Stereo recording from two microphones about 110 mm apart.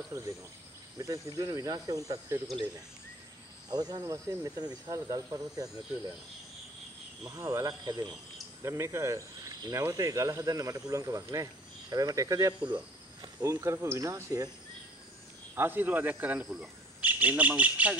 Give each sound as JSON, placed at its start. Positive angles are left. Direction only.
{"t": 0.1, "sound": "speech", "side_deg": -30}
{"t": 3.7, "sound": "speech", "side_deg": -40}
{"t": 4.0, "sound": "speech", "side_deg": -25}
{"t": 7.2, "sound": "speech", "side_deg": -30}
{"t": 8.6, "sound": "speech", "side_deg": -25}
{"t": 15.5, "sound": "speech", "side_deg": -20}